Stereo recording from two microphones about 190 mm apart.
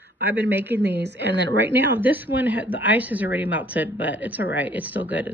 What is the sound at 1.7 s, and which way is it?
Speech, 10° right (ahead or behind).